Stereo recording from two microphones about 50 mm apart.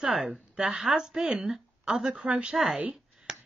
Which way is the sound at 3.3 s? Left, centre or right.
Centre.